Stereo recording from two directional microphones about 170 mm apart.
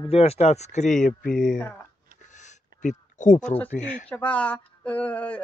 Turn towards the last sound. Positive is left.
turn(degrees=10)  # may be behind; listen again after turning